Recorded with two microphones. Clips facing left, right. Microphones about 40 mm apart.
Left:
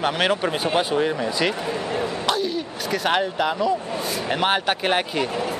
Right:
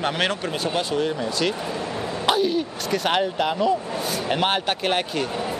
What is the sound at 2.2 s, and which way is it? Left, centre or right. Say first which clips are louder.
Speech: right 3 dB; centre.